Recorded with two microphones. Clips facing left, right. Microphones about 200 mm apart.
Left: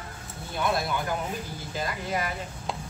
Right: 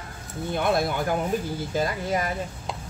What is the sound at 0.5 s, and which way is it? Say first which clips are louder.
Speech: right 4 dB; 50° right (ahead or behind).